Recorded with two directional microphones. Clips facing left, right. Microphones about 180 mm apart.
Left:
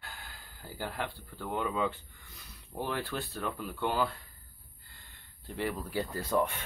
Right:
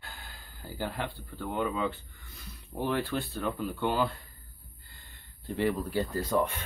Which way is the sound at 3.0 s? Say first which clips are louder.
Right 4 dB; 10° right (ahead or behind).